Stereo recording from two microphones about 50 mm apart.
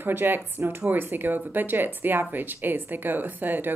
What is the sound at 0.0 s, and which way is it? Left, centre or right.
A woman's voice, right.